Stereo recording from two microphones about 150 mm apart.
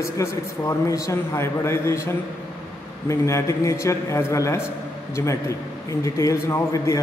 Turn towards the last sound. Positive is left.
turn(degrees=20)  # may be behind; listen again after turning